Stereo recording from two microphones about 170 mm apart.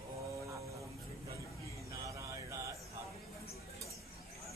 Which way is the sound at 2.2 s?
20° right (ahead or behind).